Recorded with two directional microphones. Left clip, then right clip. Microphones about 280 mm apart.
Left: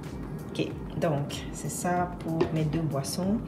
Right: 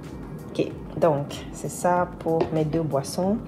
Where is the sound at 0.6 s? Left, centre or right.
Right.